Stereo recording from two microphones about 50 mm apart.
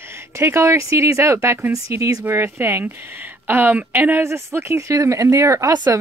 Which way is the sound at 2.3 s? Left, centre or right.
Right.